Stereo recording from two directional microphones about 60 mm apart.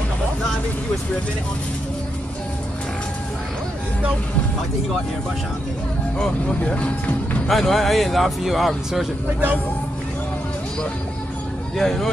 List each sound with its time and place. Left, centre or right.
6.1 s speech: centre
7.4 s speech: centre
11.7 s speech: centre